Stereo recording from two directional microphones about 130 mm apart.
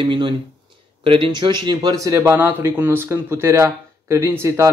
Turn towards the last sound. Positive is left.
turn(degrees=-25)  # may be behind; listen again after turning